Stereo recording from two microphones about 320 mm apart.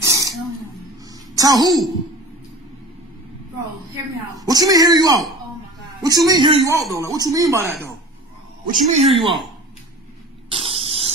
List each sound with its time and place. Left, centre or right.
0.0 s a sound: centre
1.7 s speech: centre
4.4 s speech: centre
7.6 s speech: centre
8.6 s speech: right
10.5 s spray: centre